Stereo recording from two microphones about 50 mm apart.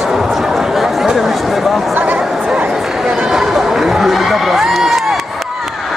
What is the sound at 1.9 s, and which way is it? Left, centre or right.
Speech, right.